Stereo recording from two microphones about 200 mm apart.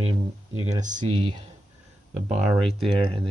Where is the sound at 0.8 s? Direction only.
40° right (ahead or behind).